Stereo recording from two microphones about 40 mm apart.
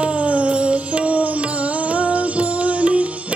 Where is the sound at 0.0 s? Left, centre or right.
Right.